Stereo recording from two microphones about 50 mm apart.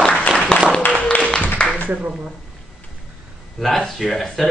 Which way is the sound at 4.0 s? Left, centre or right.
Centre.